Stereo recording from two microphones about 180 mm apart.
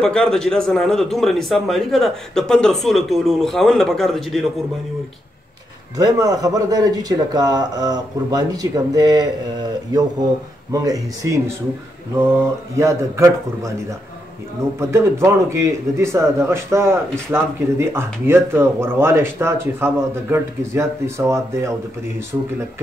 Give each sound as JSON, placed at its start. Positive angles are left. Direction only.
{"t": 0.0, "sound": "speech", "side_deg": 5}
{"t": 5.9, "sound": "a man's voice", "side_deg": -20}
{"t": 10.7, "sound": "a man's voice", "side_deg": -20}
{"t": 14.8, "sound": "a man's voice", "side_deg": -15}